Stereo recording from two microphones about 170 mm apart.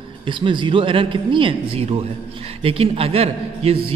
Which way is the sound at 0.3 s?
30° right (ahead or behind).